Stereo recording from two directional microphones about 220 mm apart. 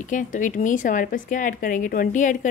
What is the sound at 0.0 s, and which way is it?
A woman's voice, 35° left (ahead or behind).